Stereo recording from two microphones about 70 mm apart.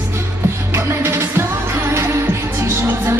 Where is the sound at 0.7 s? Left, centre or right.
Right.